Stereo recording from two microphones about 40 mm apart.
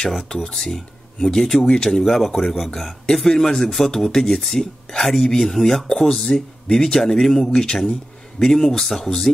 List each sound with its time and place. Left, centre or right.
0.3 s speech: centre
0.6 s speech: centre